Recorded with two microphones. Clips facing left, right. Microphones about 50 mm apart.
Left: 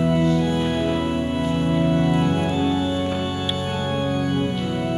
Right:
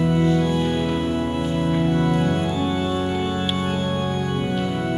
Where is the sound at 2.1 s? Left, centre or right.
Left.